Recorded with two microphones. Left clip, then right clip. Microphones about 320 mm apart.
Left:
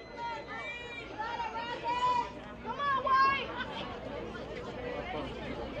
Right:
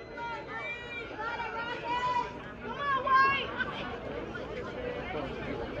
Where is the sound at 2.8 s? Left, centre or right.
Centre.